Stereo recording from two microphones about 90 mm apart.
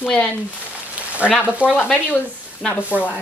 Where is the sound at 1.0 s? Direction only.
15° right (ahead or behind).